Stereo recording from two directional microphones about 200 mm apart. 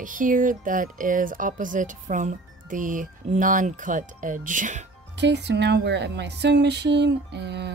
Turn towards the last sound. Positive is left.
turn(degrees=-60)  # may be behind; listen again after turning